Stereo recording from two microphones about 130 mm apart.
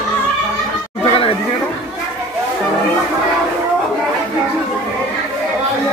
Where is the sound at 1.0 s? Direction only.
45° left (ahead or behind).